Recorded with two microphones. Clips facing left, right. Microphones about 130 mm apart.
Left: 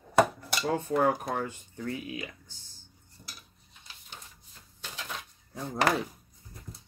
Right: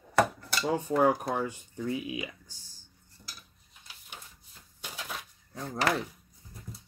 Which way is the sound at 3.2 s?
20° left (ahead or behind).